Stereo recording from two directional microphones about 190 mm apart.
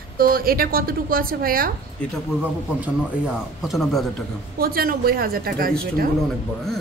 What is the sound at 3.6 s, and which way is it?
Speech, centre (ahead or behind).